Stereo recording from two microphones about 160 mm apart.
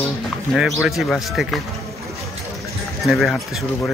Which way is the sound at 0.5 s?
5° right (ahead or behind).